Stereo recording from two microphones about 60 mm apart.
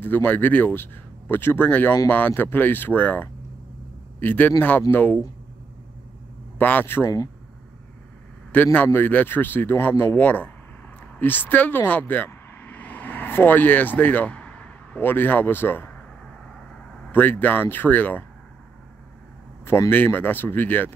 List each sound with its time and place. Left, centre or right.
0.0 s speech: left
6.6 s speech: left
8.7 s speech: left
11.9 s vehicle: left
15.0 s speech: left
17.1 s speech: left
19.9 s speech: left